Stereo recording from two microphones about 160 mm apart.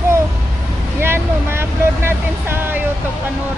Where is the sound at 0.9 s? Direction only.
15° right (ahead or behind).